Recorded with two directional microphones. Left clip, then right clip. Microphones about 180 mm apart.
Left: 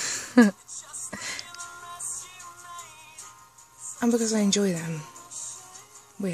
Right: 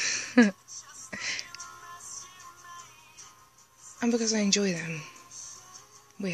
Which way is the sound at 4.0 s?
25° left (ahead or behind).